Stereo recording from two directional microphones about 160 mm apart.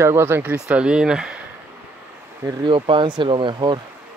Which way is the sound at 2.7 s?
30° right (ahead or behind).